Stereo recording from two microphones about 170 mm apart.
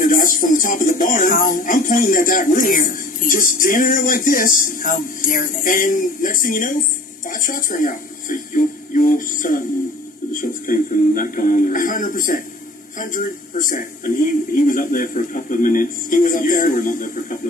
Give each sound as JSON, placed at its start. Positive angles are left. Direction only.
{"t": 0.0, "sound": "a man's voice", "side_deg": 55}